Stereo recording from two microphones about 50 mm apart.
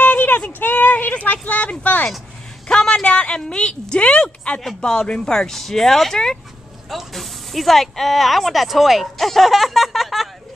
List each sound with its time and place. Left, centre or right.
0.0 s a sound: left
0.6 s speech: left
2.7 s speech: centre
4.6 s speech: centre